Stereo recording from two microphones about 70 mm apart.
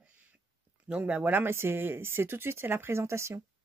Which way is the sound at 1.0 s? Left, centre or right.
Right.